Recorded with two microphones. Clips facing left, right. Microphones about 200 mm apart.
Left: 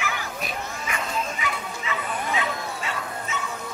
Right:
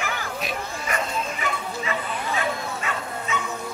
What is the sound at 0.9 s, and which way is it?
Bow-wow, 45° right (ahead or behind).